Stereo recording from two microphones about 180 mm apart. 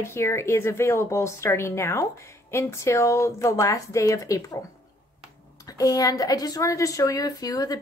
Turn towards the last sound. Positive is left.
turn(degrees=20)  # may be behind; listen again after turning